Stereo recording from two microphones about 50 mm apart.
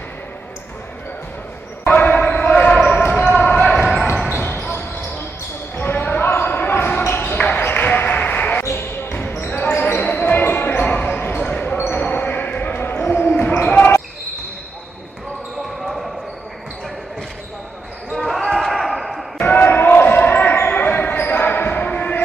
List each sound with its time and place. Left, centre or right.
2.0 s basketball bounce: left
2.7 s basketball bounce: centre
4.4 s basketball bounce: left
7.0 s basketball bounce: left
7.2 s basketball bounce: left
7.6 s a sound: left
9.0 s basketball bounce: left
11.7 s basketball bounce: left
12.0 s basketball bounce: left
13.5 s basketball bounce: left
18.1 s basketball bounce: centre
19.5 s basketball bounce: left